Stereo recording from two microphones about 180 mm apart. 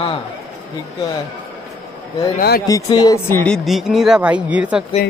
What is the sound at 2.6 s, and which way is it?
Speech, 20° left (ahead or behind).